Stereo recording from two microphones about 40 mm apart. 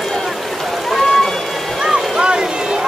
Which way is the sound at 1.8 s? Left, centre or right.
Right.